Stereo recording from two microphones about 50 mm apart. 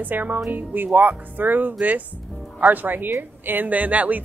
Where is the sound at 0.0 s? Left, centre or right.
Right.